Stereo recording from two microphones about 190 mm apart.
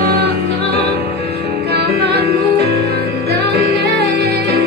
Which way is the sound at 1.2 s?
30° left (ahead or behind).